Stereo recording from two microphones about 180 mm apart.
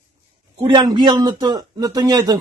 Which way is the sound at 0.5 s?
25° right (ahead or behind).